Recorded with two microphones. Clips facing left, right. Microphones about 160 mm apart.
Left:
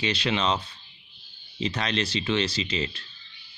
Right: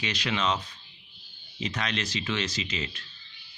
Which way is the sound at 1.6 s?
30° left (ahead or behind).